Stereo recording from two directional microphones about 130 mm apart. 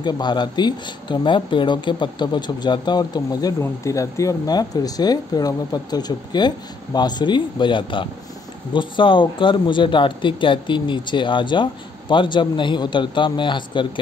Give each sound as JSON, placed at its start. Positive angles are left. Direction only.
{"t": 0.0, "sound": "speech", "side_deg": 35}